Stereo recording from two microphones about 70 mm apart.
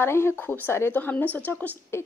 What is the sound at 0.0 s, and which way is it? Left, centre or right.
Speech, left.